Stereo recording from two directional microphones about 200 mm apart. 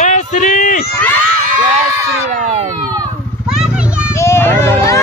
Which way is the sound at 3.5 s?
5° right (ahead or behind).